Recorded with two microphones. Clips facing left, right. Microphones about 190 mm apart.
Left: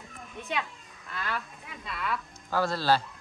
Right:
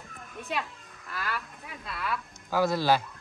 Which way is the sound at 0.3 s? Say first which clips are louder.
Even; centre (ahead or behind).